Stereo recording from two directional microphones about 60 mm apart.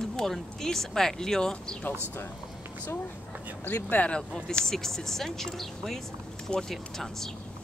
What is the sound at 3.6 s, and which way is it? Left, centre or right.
Speech, left.